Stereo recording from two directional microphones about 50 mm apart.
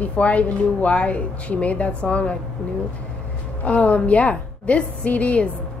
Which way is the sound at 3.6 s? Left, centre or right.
Left.